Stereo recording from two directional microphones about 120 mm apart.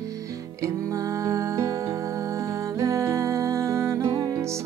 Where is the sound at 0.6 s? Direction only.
30° right (ahead or behind).